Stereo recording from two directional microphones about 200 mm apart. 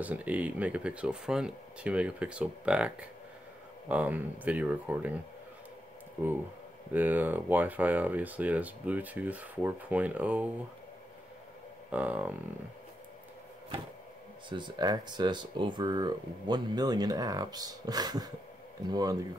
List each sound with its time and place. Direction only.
0.0 s speech: 5° right (ahead or behind)
6.9 s speech: 10° right (ahead or behind)
11.9 s speech: 5° right (ahead or behind)
14.5 s speech: 20° right (ahead or behind)